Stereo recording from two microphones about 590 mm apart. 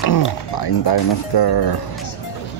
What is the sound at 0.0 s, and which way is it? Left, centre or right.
Speech, left.